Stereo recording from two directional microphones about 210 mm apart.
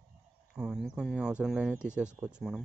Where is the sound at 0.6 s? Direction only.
5° right (ahead or behind).